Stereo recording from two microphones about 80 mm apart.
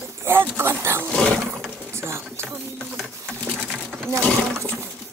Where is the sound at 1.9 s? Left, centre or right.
Right.